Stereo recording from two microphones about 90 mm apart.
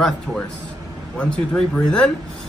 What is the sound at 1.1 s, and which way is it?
Speech, 10° left (ahead or behind).